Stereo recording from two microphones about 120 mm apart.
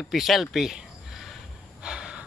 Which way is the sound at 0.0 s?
Centre (ahead or behind).